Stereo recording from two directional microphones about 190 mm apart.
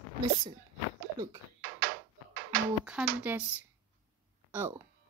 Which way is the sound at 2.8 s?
10° right (ahead or behind).